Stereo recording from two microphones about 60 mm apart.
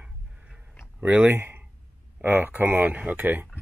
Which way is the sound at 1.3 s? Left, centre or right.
Right.